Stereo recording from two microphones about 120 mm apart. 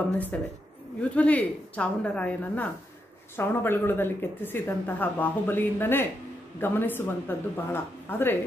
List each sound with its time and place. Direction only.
0.3 s speech: 10° left (ahead or behind)